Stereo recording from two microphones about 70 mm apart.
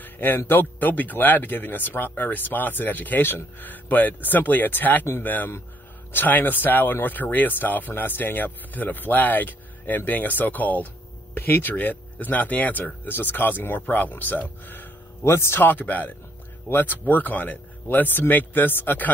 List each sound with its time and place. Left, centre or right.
0.0 s a sound: left
0.5 s speech: left
15.6 s speech: left